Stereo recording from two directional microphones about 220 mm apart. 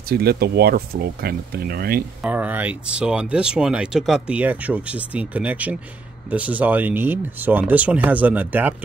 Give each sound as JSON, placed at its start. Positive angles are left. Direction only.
{"t": 0.1, "sound": "speech", "side_deg": -45}
{"t": 2.2, "sound": "speech", "side_deg": -5}